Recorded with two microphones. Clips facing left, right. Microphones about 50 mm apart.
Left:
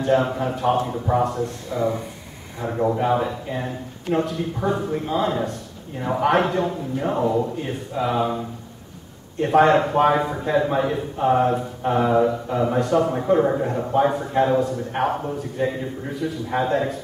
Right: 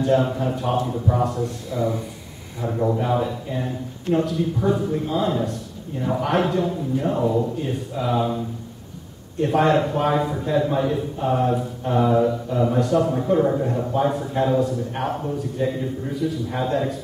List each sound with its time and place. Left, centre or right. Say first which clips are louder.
0.0 s a man's voice: even; centre
1.2 s a man's voice: even; centre